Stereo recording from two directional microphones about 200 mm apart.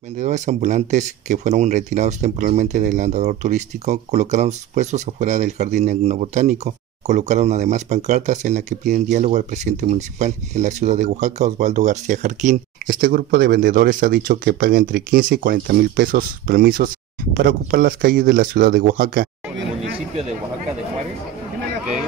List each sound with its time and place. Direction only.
0.2 s speech: 35° right (ahead or behind)